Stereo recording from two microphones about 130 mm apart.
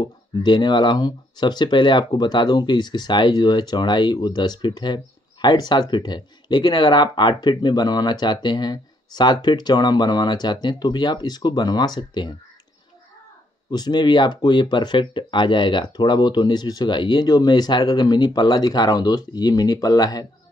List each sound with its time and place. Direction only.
0.0 s speech: 35° left (ahead or behind)
13.7 s speech: 35° left (ahead or behind)